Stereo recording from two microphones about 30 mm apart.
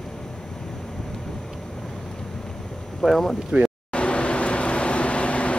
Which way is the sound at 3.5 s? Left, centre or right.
Right.